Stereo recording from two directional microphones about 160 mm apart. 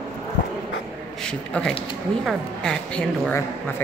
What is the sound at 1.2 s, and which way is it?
A woman's voice, 5° left (ahead or behind).